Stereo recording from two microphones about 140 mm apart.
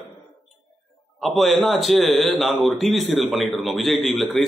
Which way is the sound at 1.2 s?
Centre (ahead or behind).